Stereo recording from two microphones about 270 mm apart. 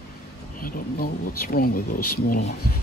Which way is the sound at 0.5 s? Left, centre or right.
Left.